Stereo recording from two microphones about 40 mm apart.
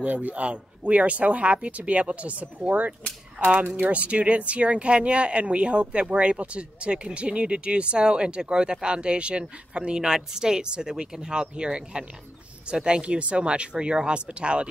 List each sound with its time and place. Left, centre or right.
0.0 s speech: right
4.1 s speech: right